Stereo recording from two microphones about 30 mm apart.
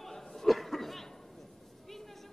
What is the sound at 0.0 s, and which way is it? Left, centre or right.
Chatter, centre.